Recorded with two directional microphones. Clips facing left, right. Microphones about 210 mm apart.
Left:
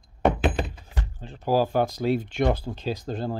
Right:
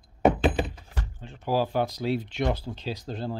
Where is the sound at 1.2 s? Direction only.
35° left (ahead or behind).